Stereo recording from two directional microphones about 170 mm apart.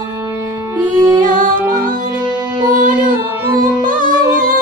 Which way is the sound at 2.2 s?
25° right (ahead or behind).